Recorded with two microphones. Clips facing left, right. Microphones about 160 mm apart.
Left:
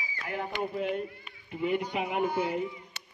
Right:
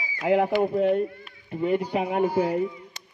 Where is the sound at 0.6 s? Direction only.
50° right (ahead or behind).